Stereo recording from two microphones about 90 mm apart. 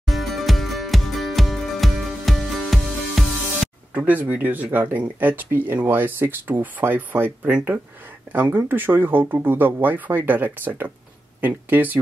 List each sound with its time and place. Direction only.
0.0 s music: centre (ahead or behind)
3.9 s speech: 20° right (ahead or behind)